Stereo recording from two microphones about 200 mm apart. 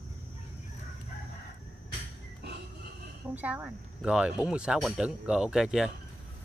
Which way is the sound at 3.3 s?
10° right (ahead or behind).